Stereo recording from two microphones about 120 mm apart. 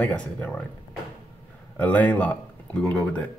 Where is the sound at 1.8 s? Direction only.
15° left (ahead or behind).